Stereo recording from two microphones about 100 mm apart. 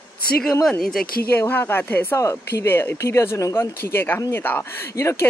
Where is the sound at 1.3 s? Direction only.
20° left (ahead or behind).